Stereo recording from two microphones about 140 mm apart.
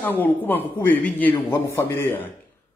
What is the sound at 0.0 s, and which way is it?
A man's voice, 15° left (ahead or behind).